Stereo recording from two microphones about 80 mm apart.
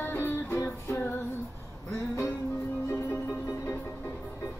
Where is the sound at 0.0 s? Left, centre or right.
Left.